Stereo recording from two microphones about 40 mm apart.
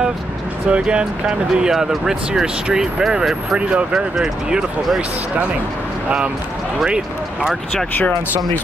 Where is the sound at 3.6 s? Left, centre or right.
Right.